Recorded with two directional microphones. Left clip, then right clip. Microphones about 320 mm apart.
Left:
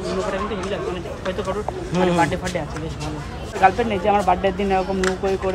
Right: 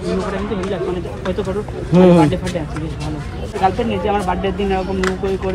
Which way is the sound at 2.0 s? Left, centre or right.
Centre.